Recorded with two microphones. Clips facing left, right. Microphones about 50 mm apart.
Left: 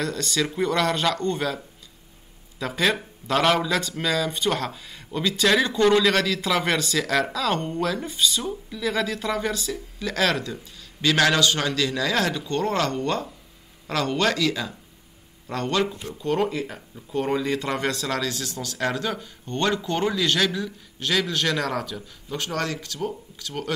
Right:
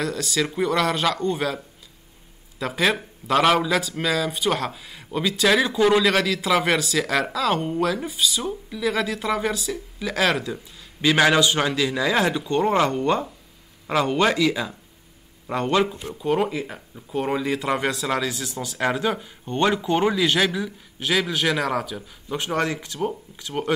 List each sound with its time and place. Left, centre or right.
0.0 s speech: centre
2.6 s speech: centre; by 23.7 s right